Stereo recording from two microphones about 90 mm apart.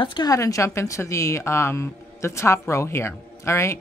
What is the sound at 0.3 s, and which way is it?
A woman's voice, 40° left (ahead or behind).